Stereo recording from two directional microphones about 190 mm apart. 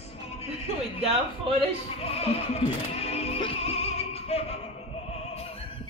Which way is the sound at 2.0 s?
30° left (ahead or behind).